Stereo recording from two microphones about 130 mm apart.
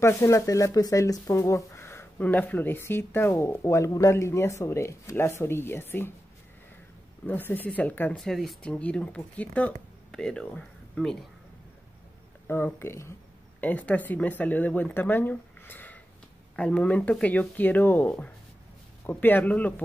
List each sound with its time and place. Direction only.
0.0 s speech: 20° left (ahead or behind)
7.2 s speech: 15° left (ahead or behind)
8.2 s speech: centre (ahead or behind)
12.4 s speech: 15° left (ahead or behind)